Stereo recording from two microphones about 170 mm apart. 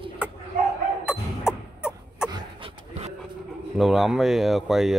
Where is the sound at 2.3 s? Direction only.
35° right (ahead or behind).